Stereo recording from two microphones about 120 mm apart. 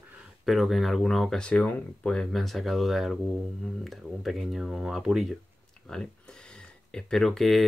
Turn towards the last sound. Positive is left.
turn(degrees=0)  # may be behind; listen again after turning